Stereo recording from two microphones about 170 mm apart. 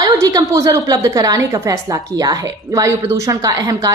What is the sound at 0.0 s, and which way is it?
A woman's voice, 20° right (ahead or behind).